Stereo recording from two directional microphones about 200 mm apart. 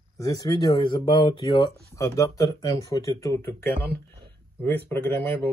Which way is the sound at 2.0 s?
15° left (ahead or behind).